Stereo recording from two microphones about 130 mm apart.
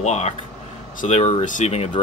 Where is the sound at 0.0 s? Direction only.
60° left (ahead or behind).